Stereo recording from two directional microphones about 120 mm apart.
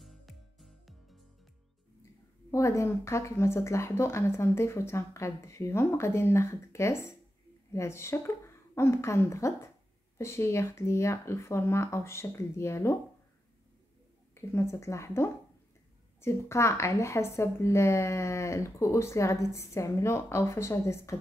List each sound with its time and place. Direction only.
0.0 s music: centre (ahead or behind)
2.5 s a woman's voice: 25° left (ahead or behind)
14.3 s a woman's voice: 25° left (ahead or behind)